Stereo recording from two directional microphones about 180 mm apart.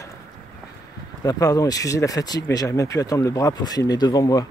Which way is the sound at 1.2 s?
20° left (ahead or behind).